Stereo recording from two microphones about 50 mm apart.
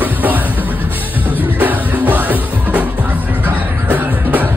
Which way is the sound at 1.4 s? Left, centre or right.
Right.